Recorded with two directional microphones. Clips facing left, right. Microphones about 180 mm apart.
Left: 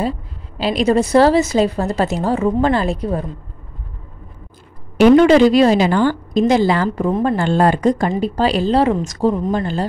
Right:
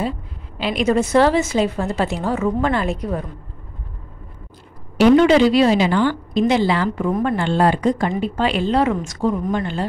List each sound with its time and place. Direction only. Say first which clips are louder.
0.6 s a woman's voice: left 3 dB; 35° left (ahead or behind)
4.9 s a woman's voice: left 3 dB; 45° left (ahead or behind)
7.1 s speech: left 3 dB; 25° left (ahead or behind)
7.3 s a woman's voice: left 2 dB; 45° left (ahead or behind)